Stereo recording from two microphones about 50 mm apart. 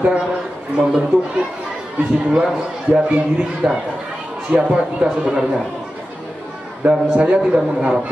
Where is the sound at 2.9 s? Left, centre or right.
Right.